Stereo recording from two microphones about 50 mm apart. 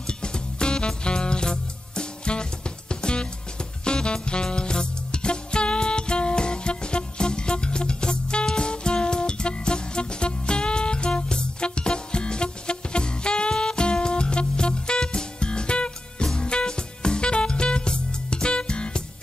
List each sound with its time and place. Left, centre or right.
0.0 s music: centre